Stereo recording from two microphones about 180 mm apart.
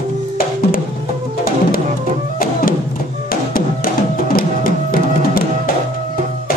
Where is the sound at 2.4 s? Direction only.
55° left (ahead or behind).